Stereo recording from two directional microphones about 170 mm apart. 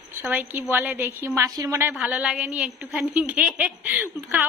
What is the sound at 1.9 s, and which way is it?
A woman's voice, 5° right (ahead or behind).